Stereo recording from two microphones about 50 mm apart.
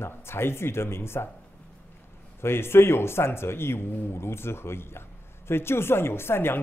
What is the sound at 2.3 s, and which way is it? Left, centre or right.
Speech, left.